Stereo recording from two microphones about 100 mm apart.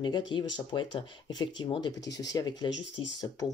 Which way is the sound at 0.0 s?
50° left (ahead or behind).